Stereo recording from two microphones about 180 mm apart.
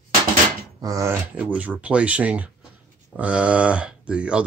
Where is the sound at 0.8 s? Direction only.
20° right (ahead or behind).